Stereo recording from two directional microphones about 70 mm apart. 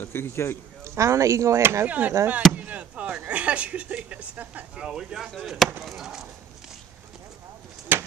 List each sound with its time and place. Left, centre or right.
0.0 s speech: left
0.8 s speech: right
1.9 s speech: right
4.8 s speech: centre
7.9 s a sound: right